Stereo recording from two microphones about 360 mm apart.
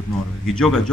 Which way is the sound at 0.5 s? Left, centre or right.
Centre.